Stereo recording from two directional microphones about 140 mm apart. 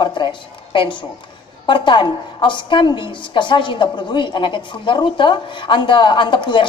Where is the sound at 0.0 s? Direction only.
35° left (ahead or behind).